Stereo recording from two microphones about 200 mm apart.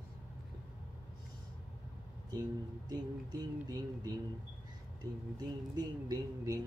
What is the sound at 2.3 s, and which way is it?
Music, 20° right (ahead or behind).